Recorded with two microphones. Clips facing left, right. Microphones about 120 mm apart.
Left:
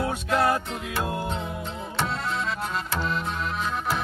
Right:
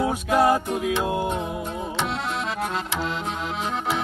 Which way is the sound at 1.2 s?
15° right (ahead or behind).